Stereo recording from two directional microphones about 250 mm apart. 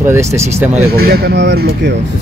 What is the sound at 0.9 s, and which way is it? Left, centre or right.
Speech, right.